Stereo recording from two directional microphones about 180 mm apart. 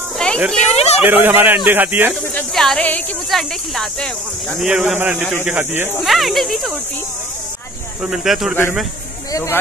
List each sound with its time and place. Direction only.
0.2 s a sound: 5° left (ahead or behind)
0.7 s speech: 35° left (ahead or behind)
1.0 s a man's voice: 10° right (ahead or behind)
2.3 s speech: centre (ahead or behind)
6.0 s speech: centre (ahead or behind)
8.0 s speech: 5° right (ahead or behind)